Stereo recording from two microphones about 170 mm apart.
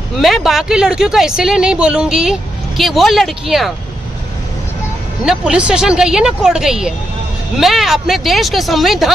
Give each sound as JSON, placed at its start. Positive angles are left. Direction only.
{"t": 0.2, "sound": "speech", "side_deg": 0}
{"t": 5.2, "sound": "speech", "side_deg": -5}